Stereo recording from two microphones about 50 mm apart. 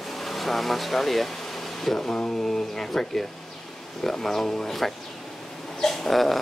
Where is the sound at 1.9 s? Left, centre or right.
Left.